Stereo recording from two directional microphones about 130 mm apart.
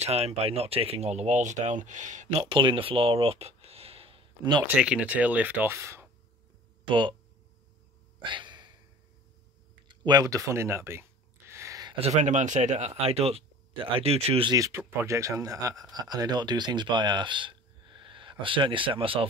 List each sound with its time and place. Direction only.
0.0 s speech: 55° right (ahead or behind); by 2.3 s 70° right (ahead or behind)
2.3 s speech: 40° right (ahead or behind)
4.7 s speech: 10° right (ahead or behind)
6.9 s speech: 40° right (ahead or behind)
8.2 s a sound: 40° right (ahead or behind)
9.8 s a sound: 35° right (ahead or behind)
12.0 s speech: 65° right (ahead or behind); by 14.5 s 50° right (ahead or behind)
14.5 s speech: 25° right (ahead or behind); by 19.2 s 45° right (ahead or behind)